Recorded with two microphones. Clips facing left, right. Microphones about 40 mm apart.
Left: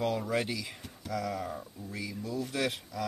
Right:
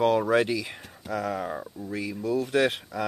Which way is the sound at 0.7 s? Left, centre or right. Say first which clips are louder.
Right 4 dB; right.